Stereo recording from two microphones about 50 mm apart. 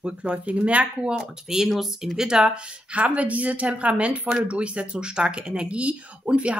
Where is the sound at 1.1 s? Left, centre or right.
Centre.